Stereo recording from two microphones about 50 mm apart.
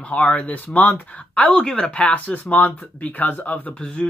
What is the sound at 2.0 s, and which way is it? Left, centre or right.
Speech, left.